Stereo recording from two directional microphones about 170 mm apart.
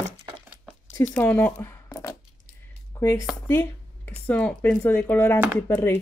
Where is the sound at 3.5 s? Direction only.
10° left (ahead or behind).